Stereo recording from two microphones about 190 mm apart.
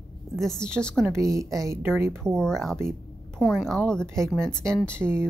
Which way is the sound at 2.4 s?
Centre (ahead or behind).